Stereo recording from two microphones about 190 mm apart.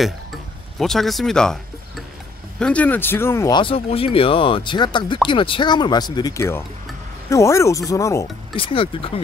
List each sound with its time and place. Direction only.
0.7 s speech: centre (ahead or behind)
8.5 s speech: 30° left (ahead or behind)